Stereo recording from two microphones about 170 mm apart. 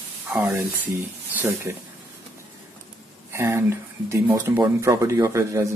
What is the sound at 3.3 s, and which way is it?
Speech, 15° right (ahead or behind).